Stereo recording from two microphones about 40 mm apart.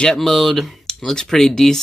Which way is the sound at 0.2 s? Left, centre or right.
Centre.